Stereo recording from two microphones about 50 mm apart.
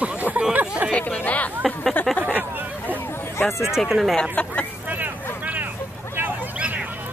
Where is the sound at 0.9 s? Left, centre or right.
Left.